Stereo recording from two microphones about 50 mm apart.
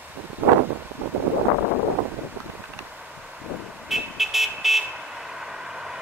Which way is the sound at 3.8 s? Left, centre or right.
Centre.